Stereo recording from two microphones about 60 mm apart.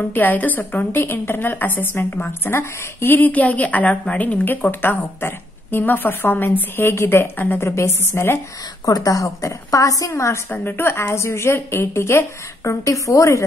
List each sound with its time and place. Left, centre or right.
0.1 s a woman's voice: left
3.2 s a woman's voice: left
8.8 s a woman's voice: left
10.5 s a woman's voice: left